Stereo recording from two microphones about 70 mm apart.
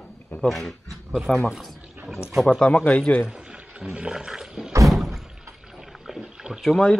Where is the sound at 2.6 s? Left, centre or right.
Centre.